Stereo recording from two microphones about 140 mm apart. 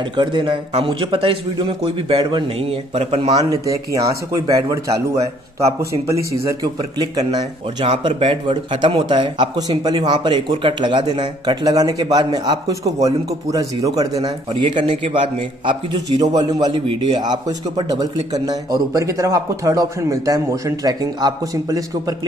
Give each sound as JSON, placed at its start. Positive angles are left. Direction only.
{"t": 0.1, "sound": "a man's voice", "side_deg": -30}
{"t": 3.4, "sound": "a man's voice", "side_deg": -25}
{"t": 7.8, "sound": "a man's voice", "side_deg": -45}